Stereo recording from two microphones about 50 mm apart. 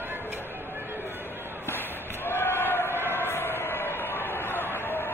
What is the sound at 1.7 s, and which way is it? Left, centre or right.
Basketball bounce, left.